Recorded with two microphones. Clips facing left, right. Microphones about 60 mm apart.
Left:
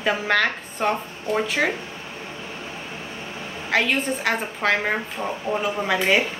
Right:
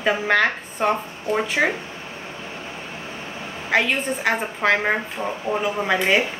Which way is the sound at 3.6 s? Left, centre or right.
Centre.